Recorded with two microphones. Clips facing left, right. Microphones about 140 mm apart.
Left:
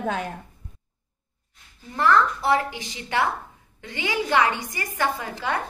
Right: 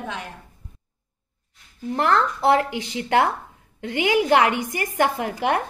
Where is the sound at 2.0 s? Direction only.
70° right (ahead or behind).